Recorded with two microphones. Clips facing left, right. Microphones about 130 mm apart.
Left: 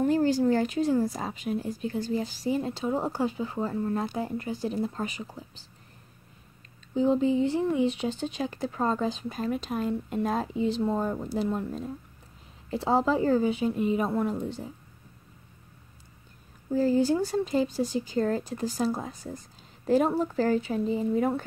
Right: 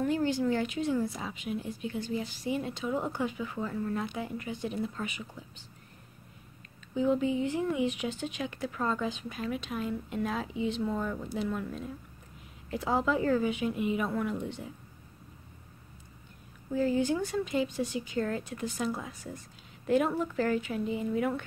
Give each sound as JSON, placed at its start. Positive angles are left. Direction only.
{"t": 0.0, "sound": "a woman's voice", "side_deg": 40}
{"t": 6.9, "sound": "a woman's voice", "side_deg": 30}
{"t": 16.7, "sound": "a woman's voice", "side_deg": 35}